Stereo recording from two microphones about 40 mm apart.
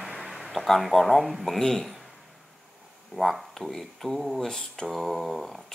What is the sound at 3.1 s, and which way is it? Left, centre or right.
Speech, centre.